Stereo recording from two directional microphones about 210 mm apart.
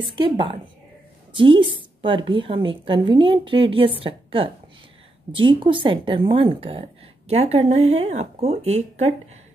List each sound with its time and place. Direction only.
0.2 s a woman's voice: 25° right (ahead or behind)